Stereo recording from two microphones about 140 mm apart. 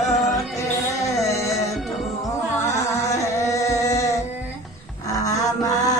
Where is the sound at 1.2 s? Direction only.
20° left (ahead or behind).